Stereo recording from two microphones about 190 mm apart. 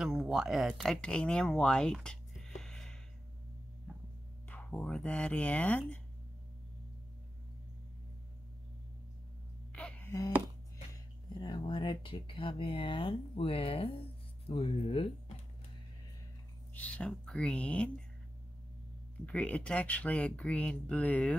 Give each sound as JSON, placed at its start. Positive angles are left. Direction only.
{"t": 0.0, "sound": "speech", "side_deg": 0}
{"t": 4.5, "sound": "speech", "side_deg": 10}
{"t": 9.7, "sound": "a sound", "side_deg": 5}
{"t": 11.3, "sound": "speech", "side_deg": 25}
{"t": 16.7, "sound": "speech", "side_deg": 5}
{"t": 19.2, "sound": "speech", "side_deg": 5}